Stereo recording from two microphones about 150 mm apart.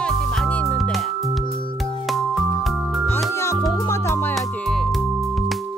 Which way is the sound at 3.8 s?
20° left (ahead or behind).